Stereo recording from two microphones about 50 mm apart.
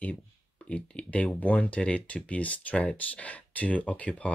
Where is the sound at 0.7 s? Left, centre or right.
Left.